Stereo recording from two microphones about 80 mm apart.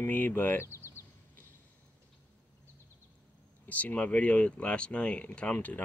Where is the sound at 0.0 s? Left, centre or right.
Left.